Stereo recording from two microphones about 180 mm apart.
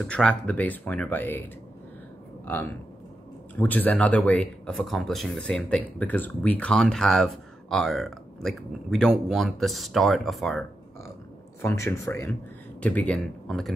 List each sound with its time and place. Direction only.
0.0 s speech: 5° left (ahead or behind)
2.4 s speech: 10° left (ahead or behind)
11.6 s speech: 15° left (ahead or behind)